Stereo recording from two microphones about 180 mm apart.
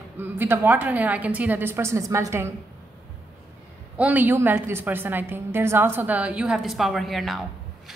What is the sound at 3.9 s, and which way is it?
A woman's voice, 10° right (ahead or behind).